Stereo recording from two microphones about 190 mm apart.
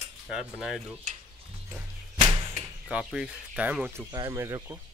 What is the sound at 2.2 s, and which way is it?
Arrow, 25° right (ahead or behind).